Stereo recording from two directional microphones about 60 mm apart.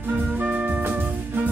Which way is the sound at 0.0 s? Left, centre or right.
Right.